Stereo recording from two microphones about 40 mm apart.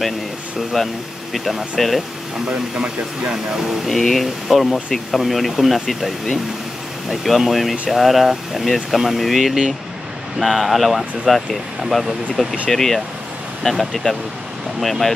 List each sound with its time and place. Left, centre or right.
0.7 s speech: centre
2.5 s speech: right
3.8 s speech: centre
14.8 s speech: centre